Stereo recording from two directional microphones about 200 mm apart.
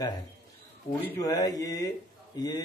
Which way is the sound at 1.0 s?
20° left (ahead or behind).